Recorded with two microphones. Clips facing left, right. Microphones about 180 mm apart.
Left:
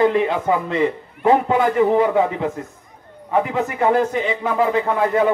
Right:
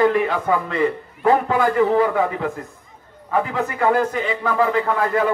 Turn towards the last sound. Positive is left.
turn(degrees=20)  # may be behind; listen again after turning